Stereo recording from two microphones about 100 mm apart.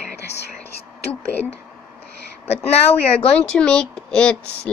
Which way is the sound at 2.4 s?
85° left.